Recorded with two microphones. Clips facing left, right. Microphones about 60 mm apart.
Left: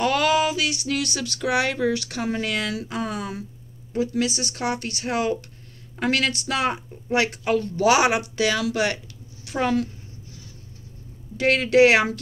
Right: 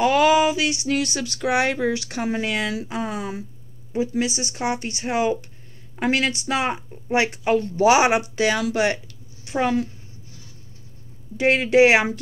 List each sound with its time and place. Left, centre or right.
0.0 s speech: centre
11.3 s speech: right